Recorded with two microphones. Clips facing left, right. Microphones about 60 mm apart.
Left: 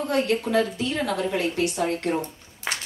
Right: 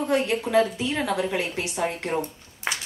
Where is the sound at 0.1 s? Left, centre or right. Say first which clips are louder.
Right 1 dB; centre.